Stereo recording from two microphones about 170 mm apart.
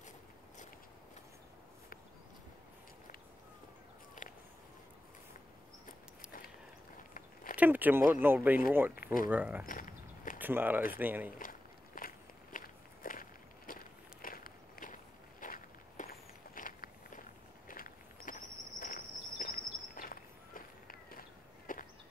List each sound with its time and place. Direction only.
4.2 s a sound: 50° left (ahead or behind)
5.9 s walk: 55° left (ahead or behind)
7.0 s biting: 50° left (ahead or behind)
7.5 s speech: 10° right (ahead or behind)
8.9 s speech: 55° left (ahead or behind)
9.3 s speech: 10° right (ahead or behind)
9.7 s a sound: 55° left (ahead or behind)
10.4 s speech: 10° right (ahead or behind)
11.3 s a sound: 55° left (ahead or behind)
12.5 s walk: 55° left (ahead or behind)